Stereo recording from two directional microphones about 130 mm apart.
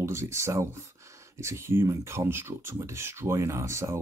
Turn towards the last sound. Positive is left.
turn(degrees=-20)  # may be behind; listen again after turning